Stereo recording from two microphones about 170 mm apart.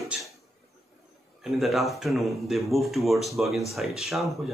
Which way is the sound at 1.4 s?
Centre (ahead or behind).